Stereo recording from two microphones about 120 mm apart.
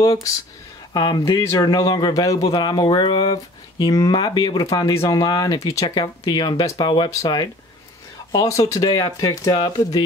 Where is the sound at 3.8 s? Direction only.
30° left (ahead or behind).